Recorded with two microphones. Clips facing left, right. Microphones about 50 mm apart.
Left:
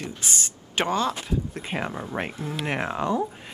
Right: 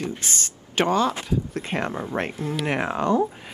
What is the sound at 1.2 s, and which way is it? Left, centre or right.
Speech, centre.